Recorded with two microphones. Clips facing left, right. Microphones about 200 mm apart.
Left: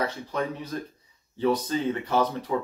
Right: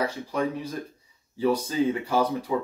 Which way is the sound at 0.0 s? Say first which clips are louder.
Right 2 dB; 10° right (ahead or behind).